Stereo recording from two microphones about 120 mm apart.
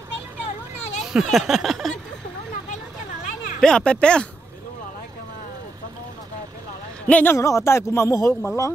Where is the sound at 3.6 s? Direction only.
5° left (ahead or behind).